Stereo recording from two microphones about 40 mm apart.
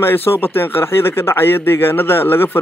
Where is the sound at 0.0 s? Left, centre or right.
Left.